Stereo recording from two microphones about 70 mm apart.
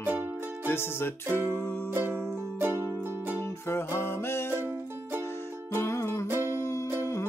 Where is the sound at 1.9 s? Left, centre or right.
Right.